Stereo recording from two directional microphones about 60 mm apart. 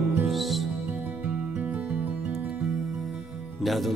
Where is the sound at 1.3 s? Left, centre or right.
Right.